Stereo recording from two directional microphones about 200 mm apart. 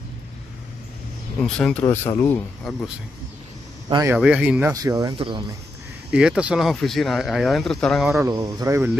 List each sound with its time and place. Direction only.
1.4 s speech: 5° left (ahead or behind)
3.9 s speech: 15° right (ahead or behind)
6.1 s speech: 5° right (ahead or behind)
8.2 s speech: 20° right (ahead or behind)